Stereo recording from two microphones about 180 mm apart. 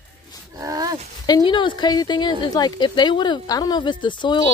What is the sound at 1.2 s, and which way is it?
Speech, 25° left (ahead or behind).